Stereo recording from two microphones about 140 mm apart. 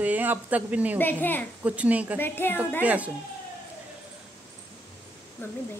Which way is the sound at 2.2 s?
15° left (ahead or behind).